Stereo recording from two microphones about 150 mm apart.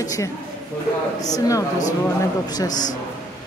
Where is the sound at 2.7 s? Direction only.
55° left (ahead or behind).